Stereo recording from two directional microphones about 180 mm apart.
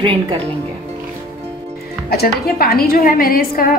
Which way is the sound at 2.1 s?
60° left (ahead or behind).